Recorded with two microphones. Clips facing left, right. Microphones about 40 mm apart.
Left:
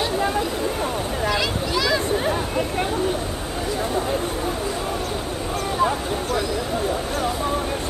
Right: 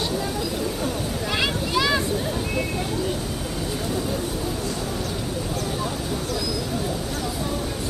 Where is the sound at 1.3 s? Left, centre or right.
Right.